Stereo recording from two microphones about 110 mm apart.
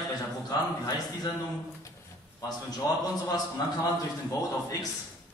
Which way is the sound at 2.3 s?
35° left (ahead or behind).